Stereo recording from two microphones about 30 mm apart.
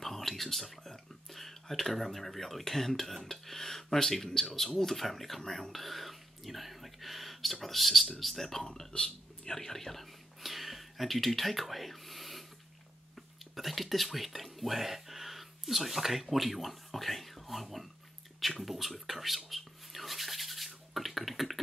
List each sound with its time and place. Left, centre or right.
0.0 s speech: centre
8.9 s a sound: left
9.5 s speech: centre
10.4 s a sound: centre
13.6 s speech: centre
18.6 s rub: centre